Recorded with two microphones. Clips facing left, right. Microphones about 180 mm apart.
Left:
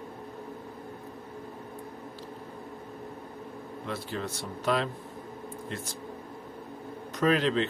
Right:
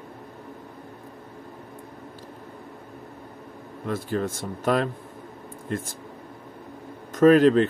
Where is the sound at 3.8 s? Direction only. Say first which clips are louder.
Right 8 dB; 45° right (ahead or behind).